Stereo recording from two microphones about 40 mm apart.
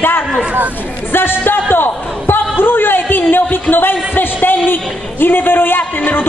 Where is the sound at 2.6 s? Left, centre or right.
Left.